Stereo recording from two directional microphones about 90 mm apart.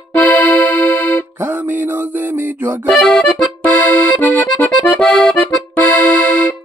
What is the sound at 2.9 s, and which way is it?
Accordion, 10° left (ahead or behind).